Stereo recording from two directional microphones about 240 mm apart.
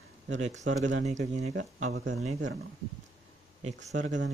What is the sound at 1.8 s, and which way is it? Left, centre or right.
Speech, right.